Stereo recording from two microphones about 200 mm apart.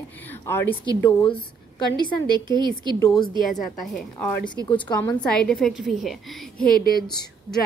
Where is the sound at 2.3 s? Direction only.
20° right (ahead or behind).